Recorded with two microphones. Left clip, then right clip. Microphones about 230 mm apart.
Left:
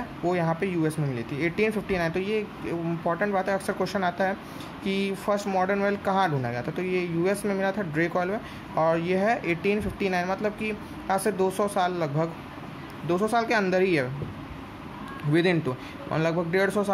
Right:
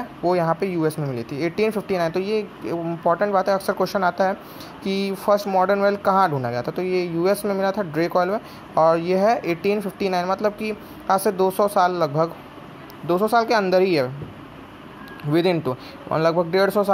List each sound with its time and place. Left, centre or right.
0.2 s speech: centre
15.3 s speech: centre